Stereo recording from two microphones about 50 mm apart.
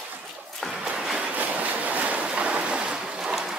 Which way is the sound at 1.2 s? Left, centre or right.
Right.